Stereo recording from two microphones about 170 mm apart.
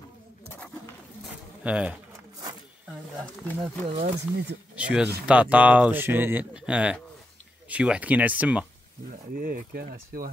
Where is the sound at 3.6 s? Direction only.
40° right (ahead or behind).